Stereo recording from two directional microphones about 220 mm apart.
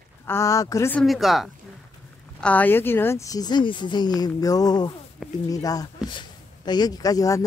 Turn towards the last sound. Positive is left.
turn(degrees=15)  # may be behind; listen again after turning